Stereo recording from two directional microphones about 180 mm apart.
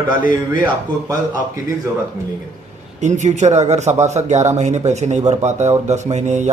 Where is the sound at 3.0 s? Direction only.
40° right (ahead or behind).